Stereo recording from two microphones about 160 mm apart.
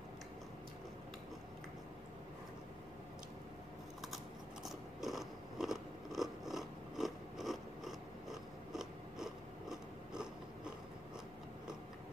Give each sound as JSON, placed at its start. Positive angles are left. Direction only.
{"t": 4.6, "sound": "biting", "side_deg": 0}